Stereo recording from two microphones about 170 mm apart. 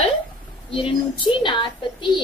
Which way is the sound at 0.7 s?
30° left (ahead or behind).